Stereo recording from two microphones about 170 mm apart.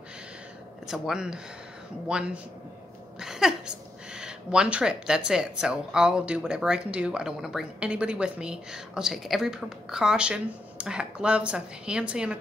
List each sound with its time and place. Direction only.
0.8 s speech: centre (ahead or behind)